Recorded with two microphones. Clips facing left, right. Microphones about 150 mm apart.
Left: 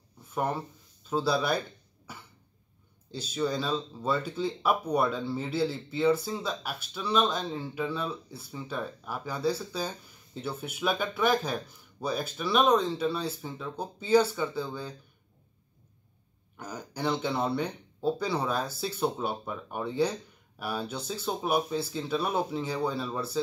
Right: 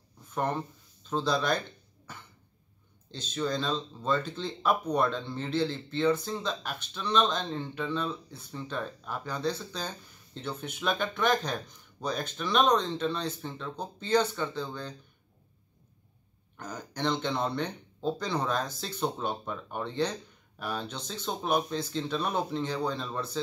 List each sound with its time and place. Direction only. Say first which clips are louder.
0.3 s speech: even; 10° left (ahead or behind)
2.1 s cough: left 1 dB; 10° left (ahead or behind)
3.1 s speech: left 1 dB; 10° left (ahead or behind)
16.5 s speech: even; 10° left (ahead or behind)